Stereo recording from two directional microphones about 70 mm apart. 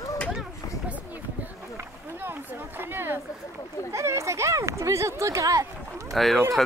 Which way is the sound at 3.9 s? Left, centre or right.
Right.